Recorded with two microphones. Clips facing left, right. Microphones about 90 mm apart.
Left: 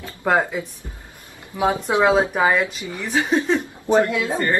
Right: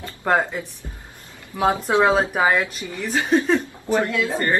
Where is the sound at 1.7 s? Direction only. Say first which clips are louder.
Right 1 dB; 15° left (ahead or behind).